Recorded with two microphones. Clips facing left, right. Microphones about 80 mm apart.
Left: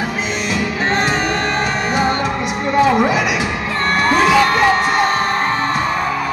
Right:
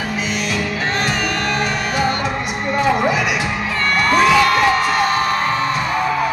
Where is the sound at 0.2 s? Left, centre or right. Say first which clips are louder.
Left 1 dB; left.